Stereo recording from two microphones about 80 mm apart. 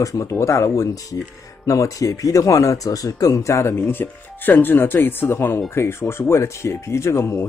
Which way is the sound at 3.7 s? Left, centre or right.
Left.